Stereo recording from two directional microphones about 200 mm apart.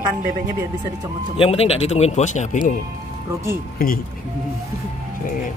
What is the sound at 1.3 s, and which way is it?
Speech, 30° left (ahead or behind).